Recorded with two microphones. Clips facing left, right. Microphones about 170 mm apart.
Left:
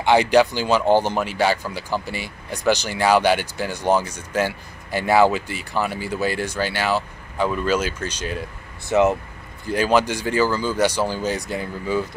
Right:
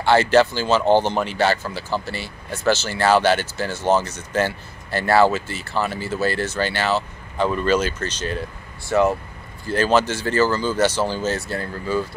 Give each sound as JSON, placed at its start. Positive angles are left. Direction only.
{"t": 0.0, "sound": "speech", "side_deg": 15}